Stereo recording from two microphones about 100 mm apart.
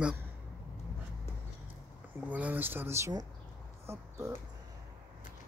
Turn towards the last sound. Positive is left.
turn(degrees=-30)  # may be behind; listen again after turning